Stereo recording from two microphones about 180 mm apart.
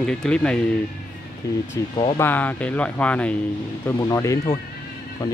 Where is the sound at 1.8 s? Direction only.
15° left (ahead or behind).